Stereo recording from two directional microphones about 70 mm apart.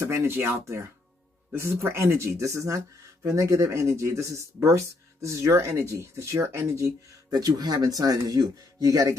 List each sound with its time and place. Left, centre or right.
0.0 s speech: right
7.2 s speech: right